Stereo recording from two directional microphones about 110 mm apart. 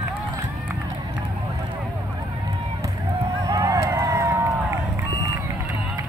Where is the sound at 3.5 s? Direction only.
30° right (ahead or behind).